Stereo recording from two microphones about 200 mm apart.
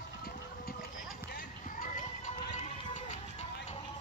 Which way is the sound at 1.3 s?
45° left (ahead or behind).